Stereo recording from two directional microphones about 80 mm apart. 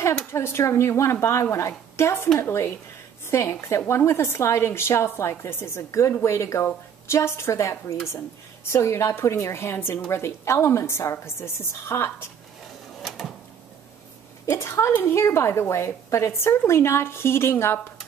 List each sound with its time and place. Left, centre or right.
0.3 s a woman's voice: left
14.4 s a woman's voice: left